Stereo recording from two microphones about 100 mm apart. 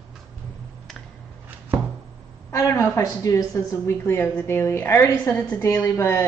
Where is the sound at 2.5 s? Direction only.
30° left (ahead or behind).